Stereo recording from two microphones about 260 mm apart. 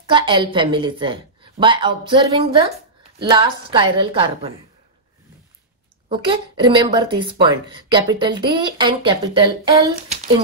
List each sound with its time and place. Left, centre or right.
0.1 s speech: centre
6.0 s speech: centre